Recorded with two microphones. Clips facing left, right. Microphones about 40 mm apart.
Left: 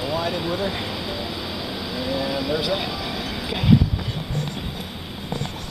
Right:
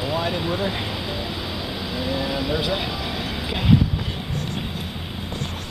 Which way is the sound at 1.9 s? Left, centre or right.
Centre.